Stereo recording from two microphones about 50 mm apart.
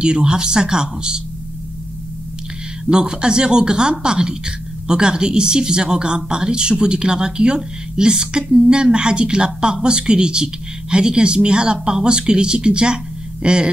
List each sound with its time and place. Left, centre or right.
0.0 s a woman's voice: centre
2.8 s a woman's voice: centre